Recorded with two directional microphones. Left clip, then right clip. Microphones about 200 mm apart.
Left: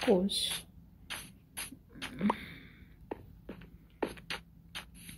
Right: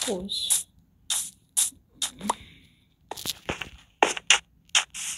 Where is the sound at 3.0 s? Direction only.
Centre (ahead or behind).